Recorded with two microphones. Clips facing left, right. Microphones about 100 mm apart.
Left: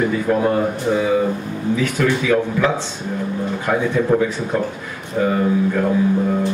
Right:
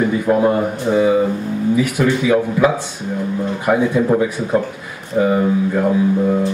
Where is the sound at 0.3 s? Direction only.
20° right (ahead or behind).